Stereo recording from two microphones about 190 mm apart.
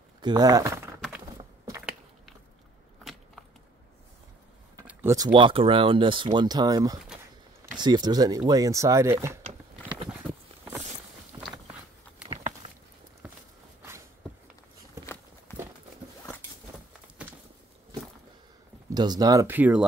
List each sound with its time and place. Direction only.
0.2 s speech: 20° right (ahead or behind)
4.7 s speech: 15° right (ahead or behind)
9.5 s biting: 35° right (ahead or behind)
18.9 s speech: 20° right (ahead or behind)